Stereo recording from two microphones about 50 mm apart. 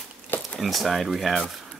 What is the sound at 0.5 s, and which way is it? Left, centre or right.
Speech, centre.